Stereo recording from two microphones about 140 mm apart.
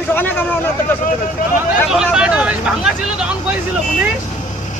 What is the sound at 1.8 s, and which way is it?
Speech, 5° right (ahead or behind).